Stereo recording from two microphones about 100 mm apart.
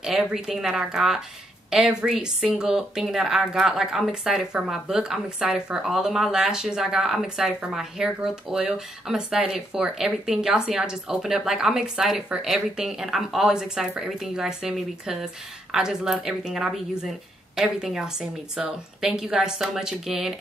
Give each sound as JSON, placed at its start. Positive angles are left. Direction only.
{"t": 0.0, "sound": "a woman's voice", "side_deg": -5}